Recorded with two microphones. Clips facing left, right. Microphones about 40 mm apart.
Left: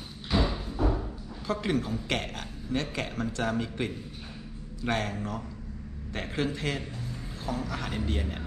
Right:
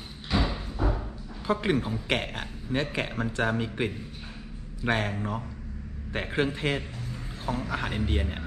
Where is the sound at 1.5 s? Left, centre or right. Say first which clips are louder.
Right 3 dB; right.